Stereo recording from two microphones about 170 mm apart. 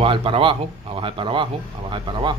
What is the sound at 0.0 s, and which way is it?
Speech, 30° right (ahead or behind).